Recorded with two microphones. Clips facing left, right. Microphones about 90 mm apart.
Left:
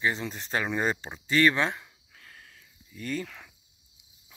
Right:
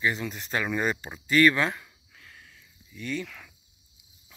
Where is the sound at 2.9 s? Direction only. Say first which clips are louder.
Even; 40° left (ahead or behind).